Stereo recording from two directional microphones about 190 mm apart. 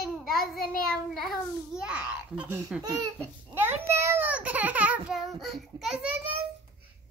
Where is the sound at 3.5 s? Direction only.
10° right (ahead or behind).